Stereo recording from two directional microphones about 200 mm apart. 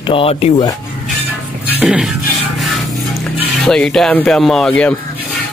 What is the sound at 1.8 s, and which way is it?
Speech, centre (ahead or behind).